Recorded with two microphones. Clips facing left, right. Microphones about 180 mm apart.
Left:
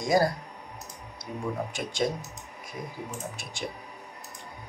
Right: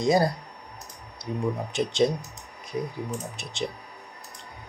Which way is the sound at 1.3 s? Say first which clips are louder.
Right 6 dB; 20° left (ahead or behind).